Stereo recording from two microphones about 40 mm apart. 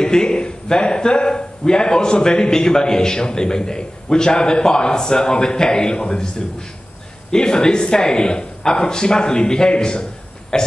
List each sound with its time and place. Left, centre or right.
0.0 s a man's voice: centre
7.2 s a man's voice: left